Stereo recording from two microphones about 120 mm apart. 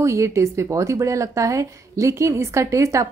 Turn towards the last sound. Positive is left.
turn(degrees=-25)  # may be behind; listen again after turning